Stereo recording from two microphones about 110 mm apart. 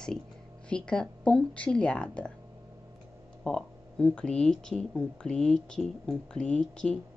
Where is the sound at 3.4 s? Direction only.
5° left (ahead or behind).